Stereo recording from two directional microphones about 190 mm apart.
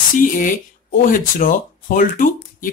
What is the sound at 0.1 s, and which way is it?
Speech, 45° left (ahead or behind).